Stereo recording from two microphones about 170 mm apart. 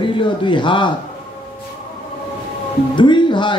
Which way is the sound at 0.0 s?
30° left (ahead or behind).